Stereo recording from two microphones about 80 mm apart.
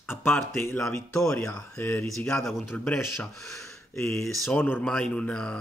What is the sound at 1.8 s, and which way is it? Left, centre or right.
A man's voice, left.